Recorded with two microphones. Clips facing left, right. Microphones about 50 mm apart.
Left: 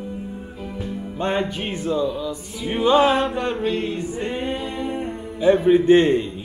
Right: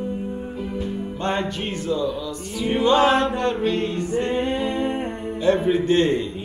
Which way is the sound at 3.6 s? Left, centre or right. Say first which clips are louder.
Right 1 dB; centre.